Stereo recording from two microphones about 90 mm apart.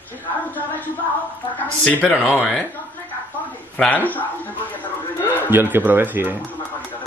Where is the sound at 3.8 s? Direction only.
15° left (ahead or behind).